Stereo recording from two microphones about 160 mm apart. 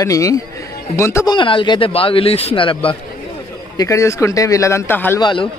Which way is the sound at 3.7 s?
20° left (ahead or behind).